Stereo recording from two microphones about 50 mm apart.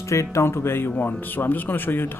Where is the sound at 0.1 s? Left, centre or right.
Left.